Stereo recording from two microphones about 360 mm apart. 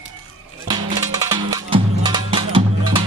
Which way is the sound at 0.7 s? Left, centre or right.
Centre.